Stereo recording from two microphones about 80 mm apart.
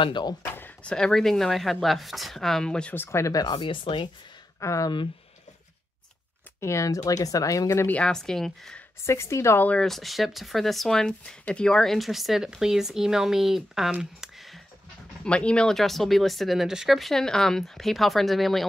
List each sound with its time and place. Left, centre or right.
0.0 s speech: left
0.6 s a sound: left
0.9 s speech: centre
2.9 s speech: left
3.3 s speech: left
4.6 s speech: left
6.6 s speech: left
8.0 s a woman's voice: centre
9.0 s speech: left
9.8 s speech: centre
14.2 s a sound: centre
15.2 s speech: centre